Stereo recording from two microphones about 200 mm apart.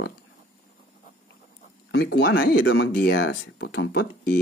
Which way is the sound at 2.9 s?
55° left (ahead or behind).